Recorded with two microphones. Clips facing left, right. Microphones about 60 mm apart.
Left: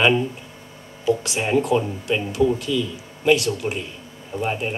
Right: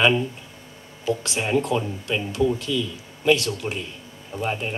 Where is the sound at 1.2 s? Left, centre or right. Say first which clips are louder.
Left 2 dB; left.